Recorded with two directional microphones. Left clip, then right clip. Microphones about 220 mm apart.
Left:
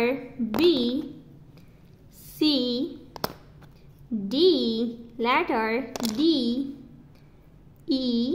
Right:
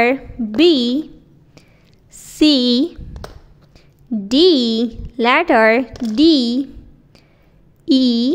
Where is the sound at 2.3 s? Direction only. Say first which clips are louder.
Right 11 dB; 30° right (ahead or behind).